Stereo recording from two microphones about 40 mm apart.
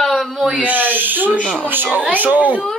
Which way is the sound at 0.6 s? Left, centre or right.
Right.